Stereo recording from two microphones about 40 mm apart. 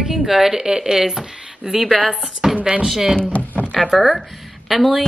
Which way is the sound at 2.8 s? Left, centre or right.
Centre.